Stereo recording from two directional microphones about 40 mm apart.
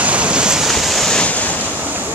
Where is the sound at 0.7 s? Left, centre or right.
Centre.